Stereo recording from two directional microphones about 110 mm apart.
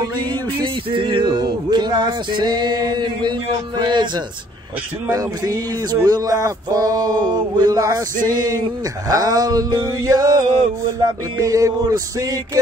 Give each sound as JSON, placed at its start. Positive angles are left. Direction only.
{"t": 0.0, "sound": "music", "side_deg": -35}
{"t": 0.9, "sound": "music", "side_deg": -50}
{"t": 5.1, "sound": "music", "side_deg": -35}
{"t": 9.1, "sound": "music", "side_deg": -35}